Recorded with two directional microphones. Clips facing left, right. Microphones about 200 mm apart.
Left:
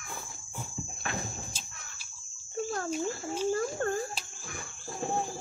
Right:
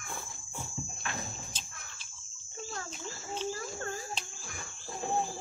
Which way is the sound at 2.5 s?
55° left (ahead or behind).